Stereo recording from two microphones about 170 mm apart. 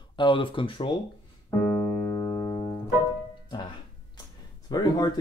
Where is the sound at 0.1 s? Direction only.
30° left (ahead or behind).